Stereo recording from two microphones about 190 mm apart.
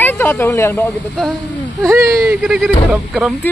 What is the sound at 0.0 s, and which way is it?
Speech, 10° left (ahead or behind).